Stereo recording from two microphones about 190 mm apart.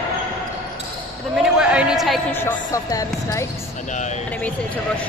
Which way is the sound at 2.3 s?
10° left (ahead or behind).